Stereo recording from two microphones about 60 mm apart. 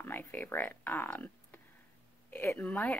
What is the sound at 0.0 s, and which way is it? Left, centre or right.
Speech, left.